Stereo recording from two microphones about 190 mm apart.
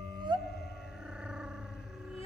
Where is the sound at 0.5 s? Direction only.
5° right (ahead or behind).